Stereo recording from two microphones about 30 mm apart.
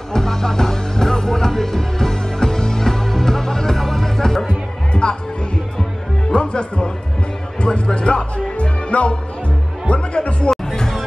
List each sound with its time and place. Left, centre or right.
0.1 s music: centre
4.9 s music: left
6.4 s music: left
10.5 s chatter: centre